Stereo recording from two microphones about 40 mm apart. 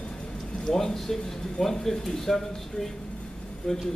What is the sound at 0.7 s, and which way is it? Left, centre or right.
Speech, centre.